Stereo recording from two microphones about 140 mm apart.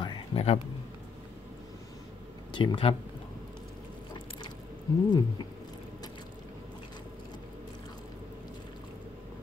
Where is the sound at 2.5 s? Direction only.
40° left (ahead or behind).